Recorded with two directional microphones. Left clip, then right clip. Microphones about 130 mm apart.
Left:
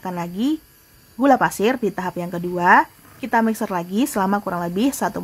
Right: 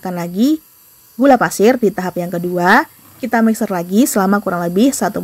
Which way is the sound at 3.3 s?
15° right (ahead or behind).